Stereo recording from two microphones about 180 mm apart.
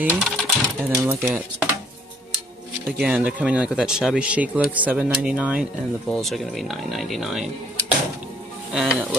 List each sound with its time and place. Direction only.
0.0 s a sound: 5° right (ahead or behind)
0.9 s speech: 15° right (ahead or behind)
3.0 s speech: 5° right (ahead or behind)
8.7 s speech: 5° right (ahead or behind)